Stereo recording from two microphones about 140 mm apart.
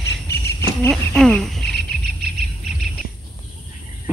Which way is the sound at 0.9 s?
Centre (ahead or behind).